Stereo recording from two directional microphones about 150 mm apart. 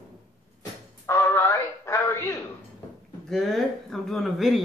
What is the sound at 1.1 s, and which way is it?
Music, 15° left (ahead or behind).